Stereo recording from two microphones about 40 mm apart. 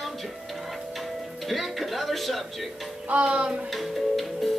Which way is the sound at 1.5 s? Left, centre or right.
Centre.